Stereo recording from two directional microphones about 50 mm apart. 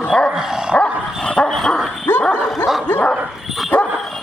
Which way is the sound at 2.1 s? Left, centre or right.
Left.